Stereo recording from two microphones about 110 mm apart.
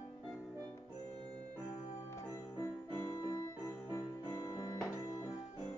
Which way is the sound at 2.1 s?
25° left (ahead or behind).